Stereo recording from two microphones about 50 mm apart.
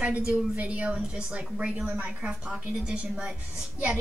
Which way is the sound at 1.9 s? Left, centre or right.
Right.